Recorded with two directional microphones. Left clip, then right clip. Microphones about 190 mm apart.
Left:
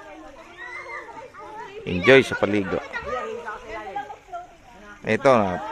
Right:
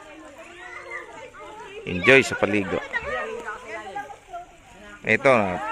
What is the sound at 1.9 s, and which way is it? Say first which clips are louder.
Speech: left 1 dB; 5° left (ahead or behind).